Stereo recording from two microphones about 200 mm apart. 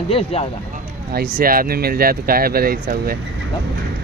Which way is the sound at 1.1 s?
45° right (ahead or behind).